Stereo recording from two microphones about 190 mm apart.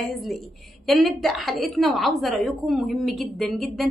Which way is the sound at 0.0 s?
Centre (ahead or behind).